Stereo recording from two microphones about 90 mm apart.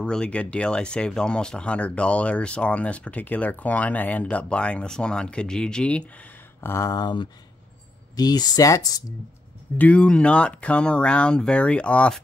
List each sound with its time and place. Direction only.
0.0 s speech: 10° left (ahead or behind)
6.6 s speech: 30° left (ahead or behind)
6.9 s speech: 50° left (ahead or behind)
9.8 s speech: 15° left (ahead or behind)